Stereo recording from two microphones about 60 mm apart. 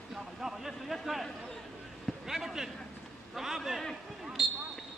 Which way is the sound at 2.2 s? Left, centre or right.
Centre.